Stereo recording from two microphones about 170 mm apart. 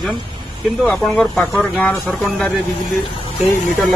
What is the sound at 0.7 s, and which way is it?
Speech, centre (ahead or behind).